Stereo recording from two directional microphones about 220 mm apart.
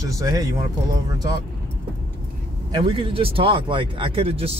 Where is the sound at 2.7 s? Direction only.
20° right (ahead or behind).